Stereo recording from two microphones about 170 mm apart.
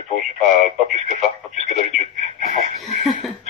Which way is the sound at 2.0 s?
45° right (ahead or behind).